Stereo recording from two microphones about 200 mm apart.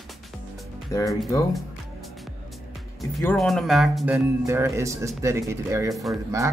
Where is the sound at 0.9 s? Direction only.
15° left (ahead or behind).